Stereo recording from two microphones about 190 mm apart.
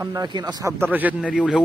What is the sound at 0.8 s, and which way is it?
Speech, 10° right (ahead or behind).